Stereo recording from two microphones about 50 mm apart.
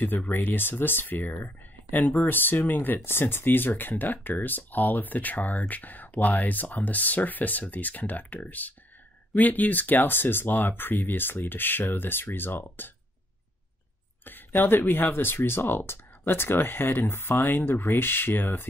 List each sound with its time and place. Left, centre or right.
0.0 s speech: left
3.0 s speech: left
14.2 s speech: left